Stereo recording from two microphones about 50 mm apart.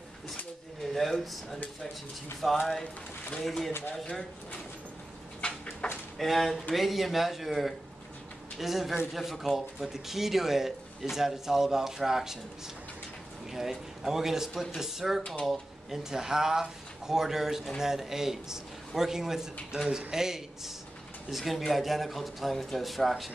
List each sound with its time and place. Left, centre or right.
0.9 s speech: centre
2.8 s speech: centre
3.4 s speech: centre
5.4 s a sound: left
5.8 s speech: centre
6.1 s speech: centre
13.5 s speech: centre